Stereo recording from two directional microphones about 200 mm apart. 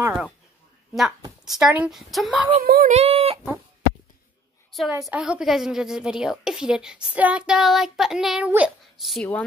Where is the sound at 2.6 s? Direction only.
50° right (ahead or behind).